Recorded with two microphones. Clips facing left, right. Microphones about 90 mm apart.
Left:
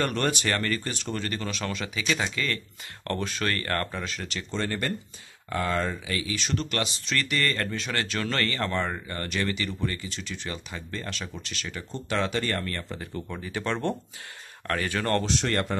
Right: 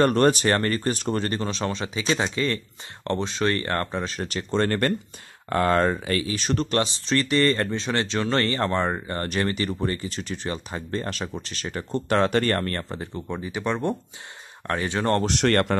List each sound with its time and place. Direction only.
0.0 s speech: 40° right (ahead or behind)
4.5 s speech: 55° right (ahead or behind); by 11.8 s 40° right (ahead or behind)
11.9 s speech: 50° right (ahead or behind)
12.9 s speech: 25° right (ahead or behind)
15.2 s speech: 65° right (ahead or behind)